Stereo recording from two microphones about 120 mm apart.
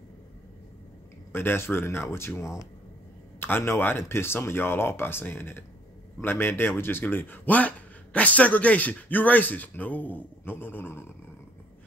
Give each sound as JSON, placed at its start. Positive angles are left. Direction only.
{"t": 1.3, "sound": "speech", "side_deg": 20}